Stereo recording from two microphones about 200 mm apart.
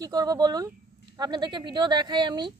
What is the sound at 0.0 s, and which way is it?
Speech, 20° right (ahead or behind).